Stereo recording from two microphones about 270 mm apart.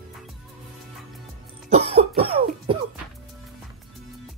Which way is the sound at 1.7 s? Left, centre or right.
Right.